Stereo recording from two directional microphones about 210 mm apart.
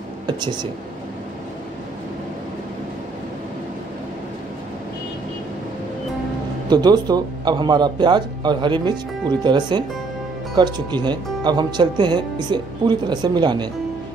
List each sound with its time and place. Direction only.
0.3 s speech: 20° right (ahead or behind)
6.7 s speech: 20° right (ahead or behind)